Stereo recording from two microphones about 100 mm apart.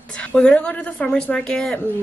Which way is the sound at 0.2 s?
10° left (ahead or behind).